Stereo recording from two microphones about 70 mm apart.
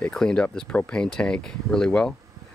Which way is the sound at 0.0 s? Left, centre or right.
Centre.